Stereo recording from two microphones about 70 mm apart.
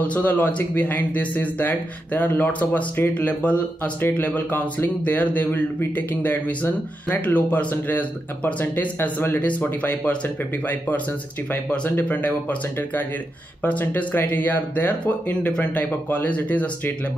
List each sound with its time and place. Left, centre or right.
0.0 s speech: left